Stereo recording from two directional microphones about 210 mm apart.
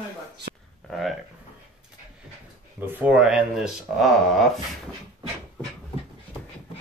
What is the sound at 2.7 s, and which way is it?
Speech, 10° right (ahead or behind).